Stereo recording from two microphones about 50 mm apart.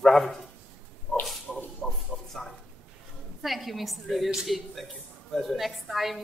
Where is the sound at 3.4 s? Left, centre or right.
Centre.